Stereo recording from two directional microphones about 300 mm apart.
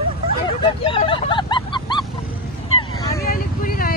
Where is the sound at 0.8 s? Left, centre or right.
Centre.